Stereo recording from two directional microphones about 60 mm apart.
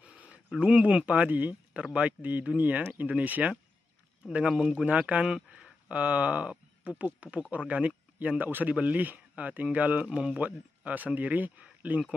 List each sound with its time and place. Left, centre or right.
0.6 s speech: centre
4.5 s speech: centre
6.8 s a sound: right
7.1 s a man's voice: right
10.0 s speech: centre
10.4 s speech: right